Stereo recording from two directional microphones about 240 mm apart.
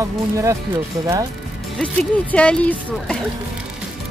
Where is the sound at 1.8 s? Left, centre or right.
Centre.